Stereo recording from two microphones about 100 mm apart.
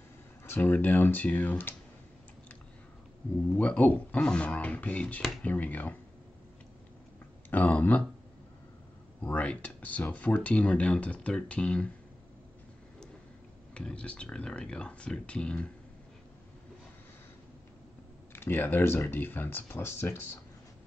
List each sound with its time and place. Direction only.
0.5 s speech: 20° left (ahead or behind)
3.5 s speech: 15° left (ahead or behind)
7.5 s speech: 15° left (ahead or behind)
9.2 s speech: 15° left (ahead or behind)
13.7 s speech: 10° left (ahead or behind)
18.3 s speech: 20° left (ahead or behind)